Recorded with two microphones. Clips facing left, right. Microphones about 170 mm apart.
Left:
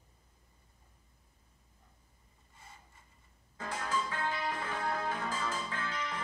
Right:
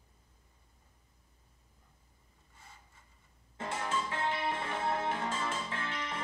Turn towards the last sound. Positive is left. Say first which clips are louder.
# even
turn(degrees=-25)  # may be behind; listen again after turning